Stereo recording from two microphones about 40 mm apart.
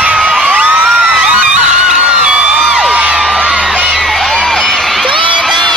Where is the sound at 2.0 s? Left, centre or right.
Right.